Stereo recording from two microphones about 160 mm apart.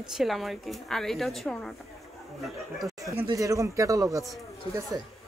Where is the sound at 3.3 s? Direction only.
20° right (ahead or behind).